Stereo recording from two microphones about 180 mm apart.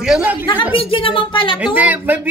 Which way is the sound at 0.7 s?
30° left (ahead or behind).